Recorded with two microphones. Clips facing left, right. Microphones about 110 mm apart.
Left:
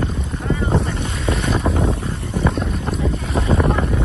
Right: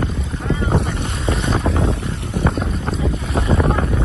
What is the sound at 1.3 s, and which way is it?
Boat, 30° right (ahead or behind).